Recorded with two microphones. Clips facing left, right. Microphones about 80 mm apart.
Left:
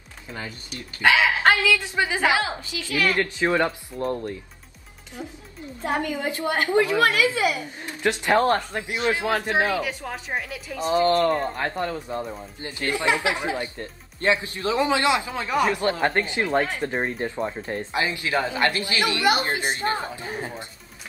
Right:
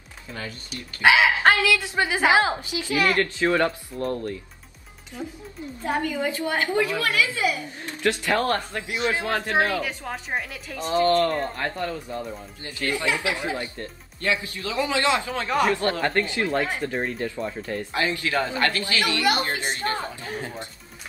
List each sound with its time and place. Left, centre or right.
0.3 s speech: left
1.0 s a woman's voice: centre
3.2 s speech: centre
6.2 s speech: left